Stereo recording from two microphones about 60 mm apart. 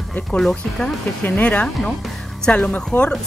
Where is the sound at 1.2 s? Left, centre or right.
Left.